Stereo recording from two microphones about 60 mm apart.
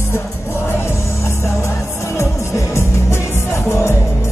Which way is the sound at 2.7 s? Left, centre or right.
Left.